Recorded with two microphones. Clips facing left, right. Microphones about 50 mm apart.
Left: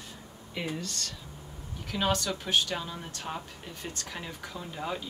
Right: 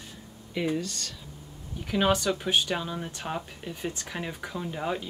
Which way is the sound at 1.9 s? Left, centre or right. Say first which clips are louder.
Right 5 dB; centre.